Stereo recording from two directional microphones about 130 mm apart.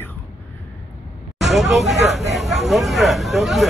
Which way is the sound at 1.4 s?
Centre (ahead or behind).